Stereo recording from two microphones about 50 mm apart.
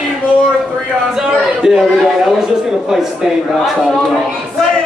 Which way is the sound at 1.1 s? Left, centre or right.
Centre.